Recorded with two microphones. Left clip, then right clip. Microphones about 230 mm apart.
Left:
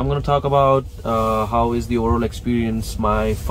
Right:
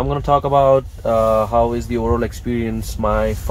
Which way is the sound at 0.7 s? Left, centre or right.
Left.